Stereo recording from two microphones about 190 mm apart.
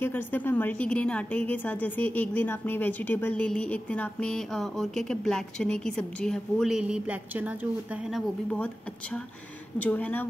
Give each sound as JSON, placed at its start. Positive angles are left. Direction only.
{"t": 0.0, "sound": "a woman's voice", "side_deg": 10}
{"t": 8.5, "sound": "a woman's voice", "side_deg": 5}